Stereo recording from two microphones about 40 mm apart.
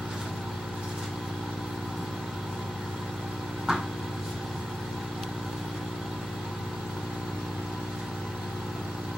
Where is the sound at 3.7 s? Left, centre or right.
Centre.